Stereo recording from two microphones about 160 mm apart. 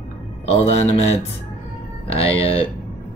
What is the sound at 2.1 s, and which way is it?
Speech, 35° left (ahead or behind).